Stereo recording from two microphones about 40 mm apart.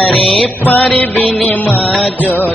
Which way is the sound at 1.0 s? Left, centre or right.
Left.